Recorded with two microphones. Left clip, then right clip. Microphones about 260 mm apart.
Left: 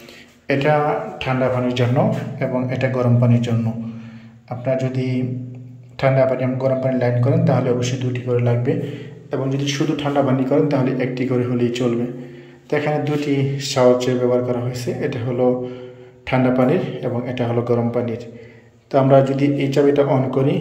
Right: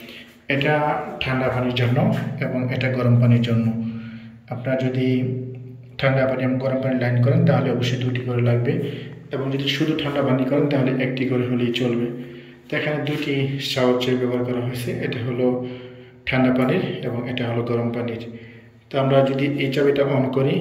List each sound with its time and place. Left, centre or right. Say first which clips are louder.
0.5 s a man's voice: left 3 dB; centre